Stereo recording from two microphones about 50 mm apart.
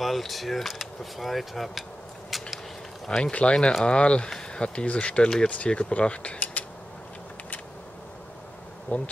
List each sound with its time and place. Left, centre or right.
0.0 s speech: centre
2.3 s a sound: centre
3.1 s speech: centre
8.9 s bee: left